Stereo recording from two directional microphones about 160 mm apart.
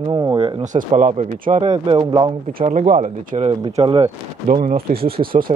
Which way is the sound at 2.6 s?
50° right (ahead or behind).